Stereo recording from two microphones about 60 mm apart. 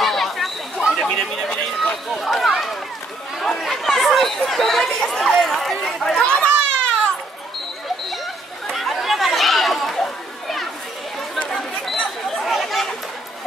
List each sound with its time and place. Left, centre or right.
0.0 s chatter: centre
1.0 s run: centre
3.3 s chatter: centre
6.2 s children playing: centre
8.7 s chatter: centre
11.3 s chatter: centre